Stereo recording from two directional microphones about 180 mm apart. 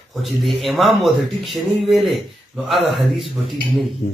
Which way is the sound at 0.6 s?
Centre (ahead or behind).